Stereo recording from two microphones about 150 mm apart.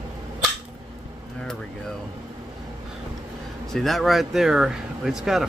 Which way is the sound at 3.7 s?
Centre (ahead or behind).